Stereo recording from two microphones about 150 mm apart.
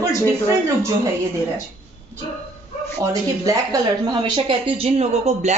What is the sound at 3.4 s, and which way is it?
A woman's voice, 25° right (ahead or behind).